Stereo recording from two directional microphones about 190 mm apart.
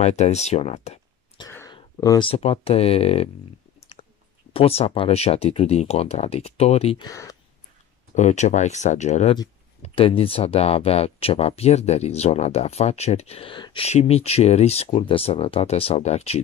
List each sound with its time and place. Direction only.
0.0 s speech: 35° left (ahead or behind)
1.7 s speech: 20° left (ahead or behind)
4.6 s speech: 30° left (ahead or behind)
7.1 s speech: 20° left (ahead or behind)
8.1 s speech: 40° left (ahead or behind)